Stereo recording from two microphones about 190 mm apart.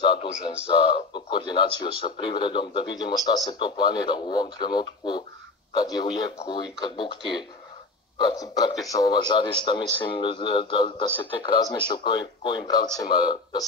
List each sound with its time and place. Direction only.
0.0 s a man's voice: 25° left (ahead or behind)